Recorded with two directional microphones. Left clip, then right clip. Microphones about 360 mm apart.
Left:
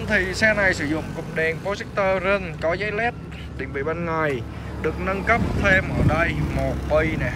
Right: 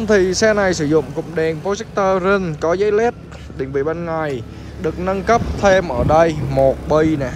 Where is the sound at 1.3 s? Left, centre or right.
Centre.